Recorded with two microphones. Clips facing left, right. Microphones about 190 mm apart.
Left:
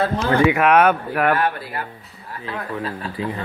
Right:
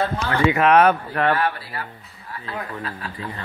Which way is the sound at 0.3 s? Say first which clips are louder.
Left 1 dB; 10° left (ahead or behind).